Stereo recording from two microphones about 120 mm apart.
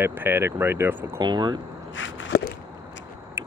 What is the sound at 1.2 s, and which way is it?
Speech, 35° right (ahead or behind).